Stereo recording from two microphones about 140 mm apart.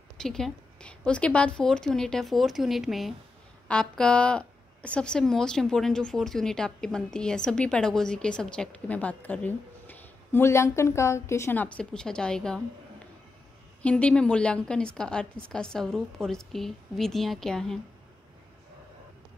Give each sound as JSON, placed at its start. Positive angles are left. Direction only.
{"t": 0.2, "sound": "a woman's voice", "side_deg": 5}
{"t": 13.8, "sound": "a woman's voice", "side_deg": 10}